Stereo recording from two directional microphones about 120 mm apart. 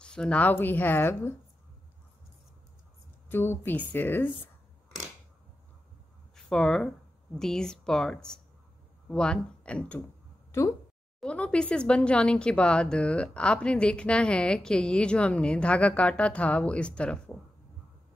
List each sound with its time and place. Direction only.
0.0 s speech: 5° left (ahead or behind)
3.3 s speech: 15° left (ahead or behind)
6.3 s speech: 5° left (ahead or behind)
11.1 s speech: 10° left (ahead or behind)